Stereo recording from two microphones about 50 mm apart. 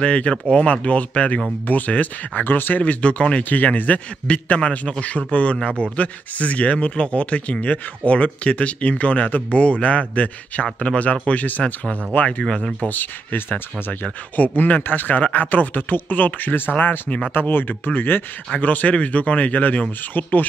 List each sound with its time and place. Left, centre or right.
0.0 s speech: left
2.8 s speech: left
12.8 s speech: left
14.0 s speech: left
18.5 s speech: left